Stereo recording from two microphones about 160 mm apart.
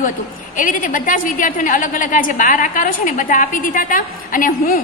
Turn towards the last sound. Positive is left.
turn(degrees=55)  # may be behind; listen again after turning